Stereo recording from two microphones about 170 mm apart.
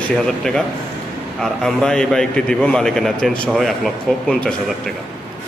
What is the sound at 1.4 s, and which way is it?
Speech, 5° left (ahead or behind).